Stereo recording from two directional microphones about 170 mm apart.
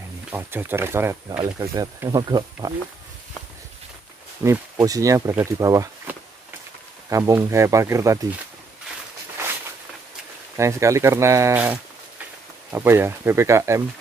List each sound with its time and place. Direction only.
0.3 s speech: 10° right (ahead or behind)
4.4 s speech: 20° right (ahead or behind)
10.6 s speech: 15° right (ahead or behind)